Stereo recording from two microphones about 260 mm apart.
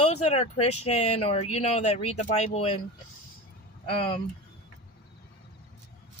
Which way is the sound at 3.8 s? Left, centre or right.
Centre.